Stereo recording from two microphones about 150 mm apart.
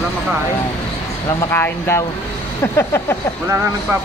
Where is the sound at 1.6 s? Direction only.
15° left (ahead or behind).